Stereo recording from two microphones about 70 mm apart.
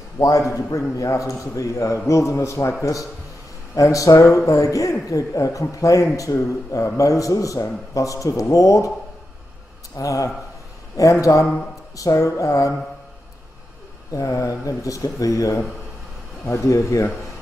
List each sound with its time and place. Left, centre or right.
0.9 s a man's voice: left
9.9 s a man's voice: left
11.0 s a sound: left
14.1 s a man's voice: left
16.4 s speech: left